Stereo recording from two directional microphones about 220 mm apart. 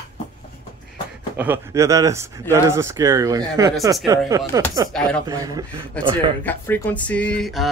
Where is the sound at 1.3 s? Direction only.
10° right (ahead or behind).